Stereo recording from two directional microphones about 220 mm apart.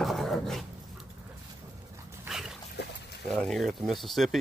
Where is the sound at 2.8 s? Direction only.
50° left (ahead or behind).